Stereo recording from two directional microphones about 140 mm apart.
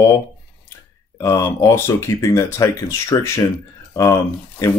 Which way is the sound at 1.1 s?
20° left (ahead or behind).